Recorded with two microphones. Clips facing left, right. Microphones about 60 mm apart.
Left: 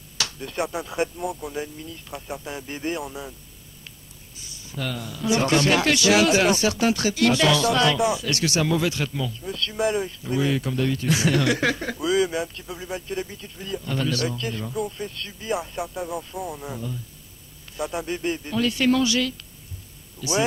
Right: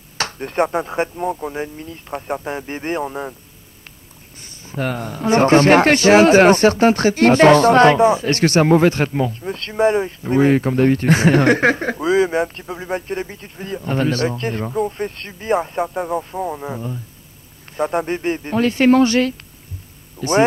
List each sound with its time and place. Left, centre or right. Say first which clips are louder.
0.2 s a man's voice: right 8 dB; right
4.4 s a man's voice: right 8 dB; right